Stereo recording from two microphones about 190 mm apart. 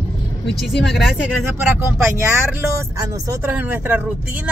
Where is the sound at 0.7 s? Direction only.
60° left (ahead or behind).